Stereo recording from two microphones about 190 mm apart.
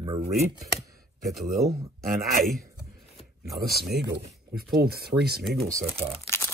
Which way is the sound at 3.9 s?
60° right (ahead or behind).